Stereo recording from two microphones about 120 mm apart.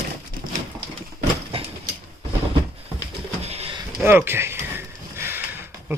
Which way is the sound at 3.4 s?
60° right (ahead or behind).